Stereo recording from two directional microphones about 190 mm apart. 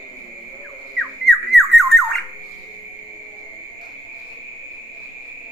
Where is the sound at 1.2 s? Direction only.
Centre (ahead or behind).